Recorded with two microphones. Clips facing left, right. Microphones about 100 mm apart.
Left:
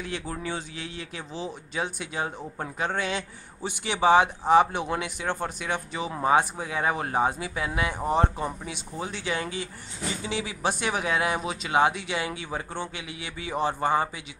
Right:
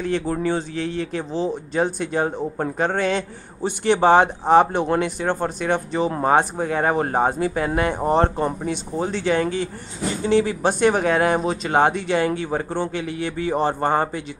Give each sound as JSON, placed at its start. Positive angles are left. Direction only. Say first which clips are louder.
{"t": 0.0, "sound": "speech", "louder": "right 11 dB", "side_deg": -45}
{"t": 2.3, "sound": "speech", "louder": "right 10 dB", "side_deg": -25}
{"t": 2.8, "sound": "a man's voice", "louder": "right 7 dB", "side_deg": -55}